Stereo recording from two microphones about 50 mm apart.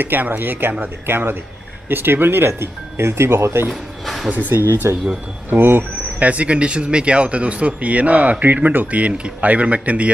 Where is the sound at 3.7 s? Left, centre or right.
Centre.